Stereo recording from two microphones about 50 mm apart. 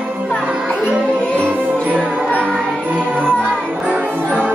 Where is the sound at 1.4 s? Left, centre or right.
Right.